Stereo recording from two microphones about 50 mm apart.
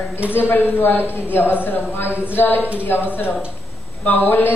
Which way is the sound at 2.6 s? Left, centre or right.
Right.